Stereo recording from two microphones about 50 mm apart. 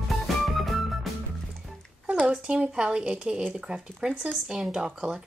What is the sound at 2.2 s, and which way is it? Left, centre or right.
Speech, centre.